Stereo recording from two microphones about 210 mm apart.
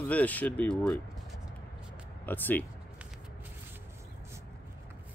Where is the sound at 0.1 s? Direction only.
5° left (ahead or behind).